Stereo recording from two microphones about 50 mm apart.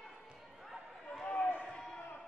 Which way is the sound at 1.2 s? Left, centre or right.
Left.